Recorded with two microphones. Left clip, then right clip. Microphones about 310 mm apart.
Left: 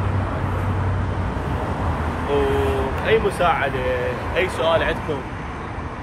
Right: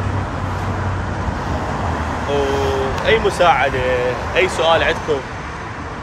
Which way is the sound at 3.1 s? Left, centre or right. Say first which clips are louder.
Right 5 dB; centre.